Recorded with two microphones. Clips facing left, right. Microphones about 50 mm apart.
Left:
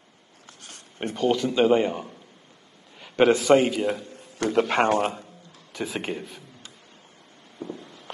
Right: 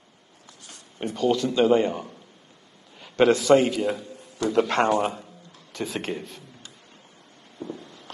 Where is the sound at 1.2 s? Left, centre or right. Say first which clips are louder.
Even; centre.